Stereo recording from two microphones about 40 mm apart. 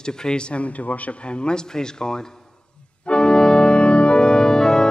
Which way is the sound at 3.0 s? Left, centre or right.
Left.